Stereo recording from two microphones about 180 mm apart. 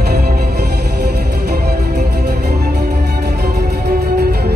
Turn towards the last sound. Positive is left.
turn(degrees=-65)  # may be behind; listen again after turning